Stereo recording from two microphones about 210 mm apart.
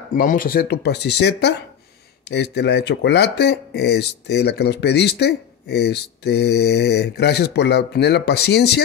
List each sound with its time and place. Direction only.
0.1 s speech: 40° left (ahead or behind)